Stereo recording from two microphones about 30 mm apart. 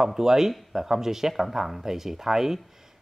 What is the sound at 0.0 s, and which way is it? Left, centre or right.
Speech, centre.